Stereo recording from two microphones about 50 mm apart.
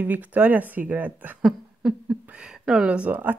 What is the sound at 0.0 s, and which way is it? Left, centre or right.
Speech, right.